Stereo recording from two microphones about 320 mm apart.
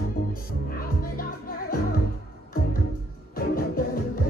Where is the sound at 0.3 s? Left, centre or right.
Left.